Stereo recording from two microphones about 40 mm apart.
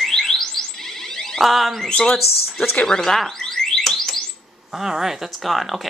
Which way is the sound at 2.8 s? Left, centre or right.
Centre.